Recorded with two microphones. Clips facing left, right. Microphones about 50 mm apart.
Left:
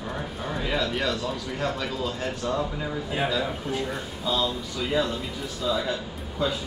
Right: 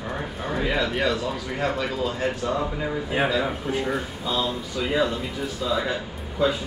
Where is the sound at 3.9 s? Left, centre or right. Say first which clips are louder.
Right 2 dB; centre.